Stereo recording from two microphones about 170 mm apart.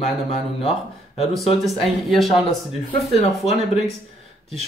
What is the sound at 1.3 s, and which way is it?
A man's voice, centre (ahead or behind).